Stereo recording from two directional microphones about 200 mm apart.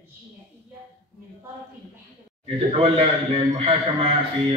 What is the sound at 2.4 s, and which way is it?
A man's voice, 30° right (ahead or behind).